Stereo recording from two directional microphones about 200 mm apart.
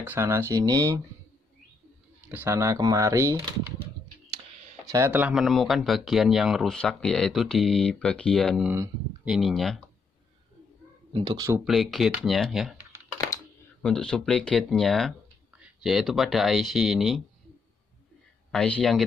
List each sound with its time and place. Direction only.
0.0 s speech: 10° right (ahead or behind)
2.2 s speech: 10° right (ahead or behind)
4.8 s speech: 15° right (ahead or behind); by 8.7 s centre (ahead or behind)
8.7 s a sound: 15° right (ahead or behind)
9.3 s speech: centre (ahead or behind)
11.1 s speech: 20° right (ahead or behind)
11.6 s speech: centre (ahead or behind)
13.8 s speech: 5° left (ahead or behind)
18.5 s speech: 5° left (ahead or behind)